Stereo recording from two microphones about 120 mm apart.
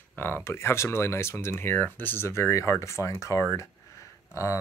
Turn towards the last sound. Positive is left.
turn(degrees=25)  # may be behind; listen again after turning